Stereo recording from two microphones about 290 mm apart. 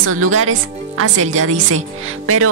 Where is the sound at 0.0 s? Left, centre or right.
Right.